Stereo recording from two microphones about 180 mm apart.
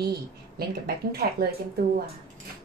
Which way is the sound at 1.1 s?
60° right (ahead or behind).